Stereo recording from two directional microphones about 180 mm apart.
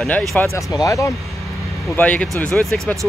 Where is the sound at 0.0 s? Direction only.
Centre (ahead or behind).